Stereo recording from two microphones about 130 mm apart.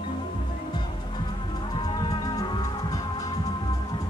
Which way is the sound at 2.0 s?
30° left (ahead or behind).